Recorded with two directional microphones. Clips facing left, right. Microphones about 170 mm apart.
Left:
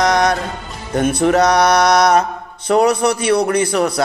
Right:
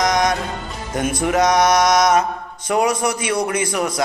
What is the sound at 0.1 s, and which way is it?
Music, 30° left (ahead or behind).